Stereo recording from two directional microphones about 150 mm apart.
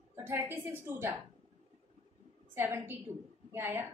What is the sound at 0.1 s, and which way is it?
A woman's voice, 15° right (ahead or behind).